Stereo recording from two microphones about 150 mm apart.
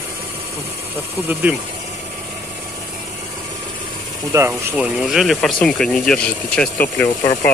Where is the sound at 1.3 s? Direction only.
10° right (ahead or behind).